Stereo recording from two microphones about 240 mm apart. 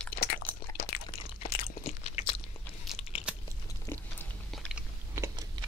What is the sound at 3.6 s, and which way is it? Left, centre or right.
Chewing, centre.